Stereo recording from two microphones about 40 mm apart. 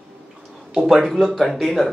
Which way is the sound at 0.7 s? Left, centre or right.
Centre.